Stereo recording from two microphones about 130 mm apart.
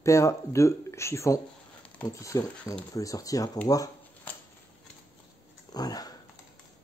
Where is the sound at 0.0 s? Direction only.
25° left (ahead or behind).